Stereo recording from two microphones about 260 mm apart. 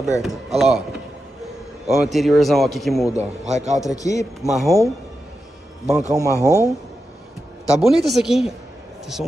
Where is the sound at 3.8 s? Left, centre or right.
Centre.